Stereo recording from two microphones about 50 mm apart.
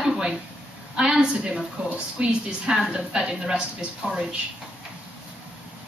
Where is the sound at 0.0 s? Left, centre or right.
Centre.